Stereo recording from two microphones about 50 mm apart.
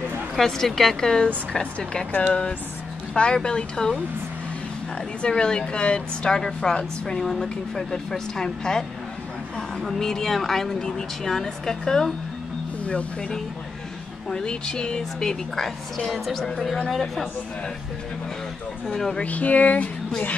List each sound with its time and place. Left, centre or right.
0.4 s a woman's voice: centre
2.1 s speech: left
3.2 s a woman's voice: centre
5.3 s a woman's voice: centre
14.3 s a woman's voice: centre
18.9 s a woman's voice: centre
19.1 s speech: left